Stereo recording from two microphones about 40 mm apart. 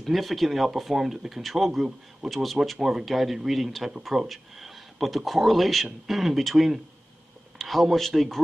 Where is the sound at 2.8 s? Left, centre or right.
Centre.